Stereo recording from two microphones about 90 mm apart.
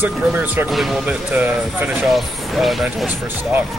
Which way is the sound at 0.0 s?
20° right (ahead or behind).